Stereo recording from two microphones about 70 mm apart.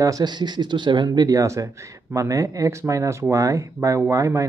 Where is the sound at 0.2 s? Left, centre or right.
Right.